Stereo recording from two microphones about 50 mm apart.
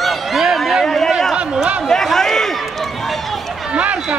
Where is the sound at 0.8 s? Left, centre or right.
Centre.